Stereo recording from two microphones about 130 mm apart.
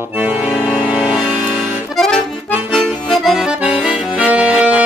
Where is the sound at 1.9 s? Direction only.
5° left (ahead or behind).